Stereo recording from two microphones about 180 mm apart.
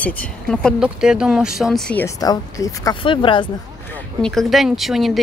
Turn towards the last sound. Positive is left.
turn(degrees=0)  # may be behind; listen again after turning